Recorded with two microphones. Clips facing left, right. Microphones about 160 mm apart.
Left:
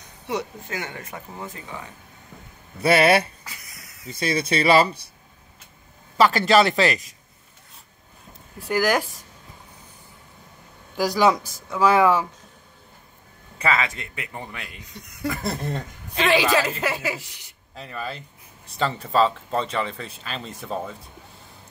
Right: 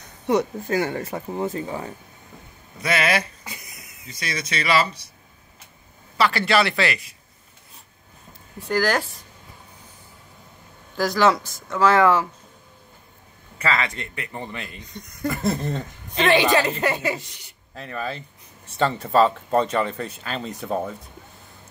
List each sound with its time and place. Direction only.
0.3 s speech: 40° right (ahead or behind)
2.8 s speech: 30° left (ahead or behind)
3.4 s a sound: 20° right (ahead or behind)
4.4 s speech: 30° left (ahead or behind)
6.1 s speech: 45° left (ahead or behind)
8.5 s speech: 10° left (ahead or behind)
11.0 s speech: 10° left (ahead or behind)
13.7 s speech: 10° left (ahead or behind); by 20.9 s 5° right (ahead or behind)